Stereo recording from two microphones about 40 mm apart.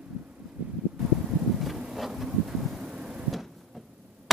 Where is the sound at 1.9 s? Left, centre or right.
Centre.